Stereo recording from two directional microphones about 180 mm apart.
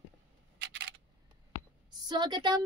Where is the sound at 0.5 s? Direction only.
65° right (ahead or behind).